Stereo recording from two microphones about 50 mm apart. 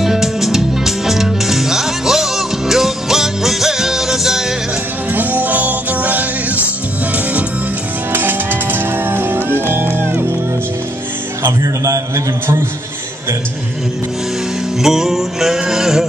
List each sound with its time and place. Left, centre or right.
0.0 s music: centre
5.1 s music: right
8.1 s music: right
11.4 s music: right
14.8 s music: centre
15.6 s a sound: centre